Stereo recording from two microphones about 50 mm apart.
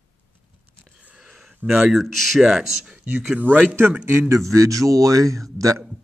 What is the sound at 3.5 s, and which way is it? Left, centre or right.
Speech, left.